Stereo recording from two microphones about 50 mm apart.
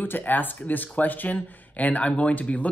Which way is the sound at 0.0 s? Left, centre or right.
Left.